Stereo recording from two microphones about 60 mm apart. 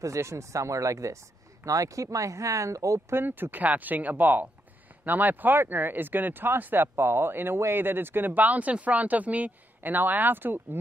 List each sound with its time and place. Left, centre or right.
0.0 s speech: right
3.1 s speech: right